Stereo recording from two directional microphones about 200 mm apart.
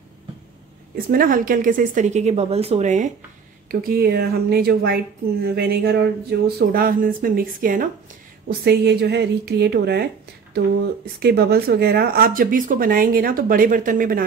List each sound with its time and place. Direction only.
0.9 s a woman's voice: 45° right (ahead or behind)
3.8 s a woman's voice: 50° right (ahead or behind)